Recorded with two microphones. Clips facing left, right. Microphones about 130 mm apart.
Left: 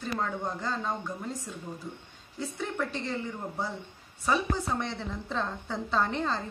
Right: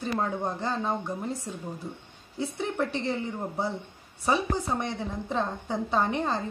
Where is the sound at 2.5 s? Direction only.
20° right (ahead or behind).